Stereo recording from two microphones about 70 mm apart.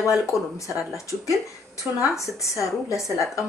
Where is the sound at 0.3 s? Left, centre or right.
Left.